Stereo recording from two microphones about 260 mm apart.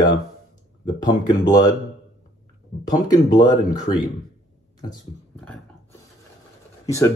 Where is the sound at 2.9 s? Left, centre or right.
Centre.